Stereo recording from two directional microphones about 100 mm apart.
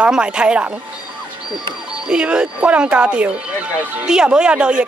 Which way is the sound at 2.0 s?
10° right (ahead or behind).